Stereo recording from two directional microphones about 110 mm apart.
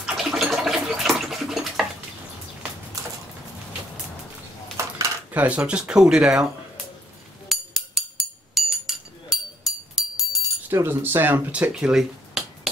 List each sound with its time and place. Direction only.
0.0 s a sound: 5° right (ahead or behind)
4.7 s dishes: 30° right (ahead or behind)
5.3 s speech: 10° right (ahead or behind)
7.4 s a sound: centre (ahead or behind)
8.5 s music: 5° right (ahead or behind)
10.7 s speech: 20° right (ahead or behind); by 12.4 s 5° right (ahead or behind)